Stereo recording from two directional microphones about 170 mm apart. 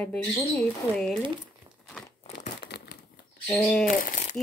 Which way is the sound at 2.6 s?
70° left (ahead or behind).